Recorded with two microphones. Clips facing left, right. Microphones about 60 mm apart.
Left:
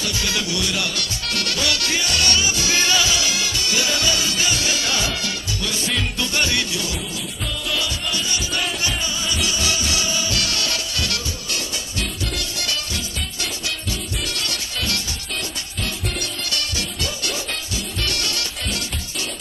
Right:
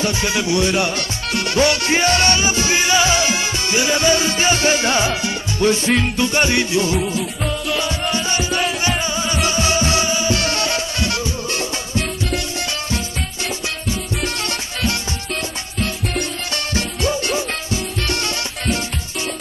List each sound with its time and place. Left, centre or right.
0.0 s music: right
8.1 s music: right
16.2 s music: right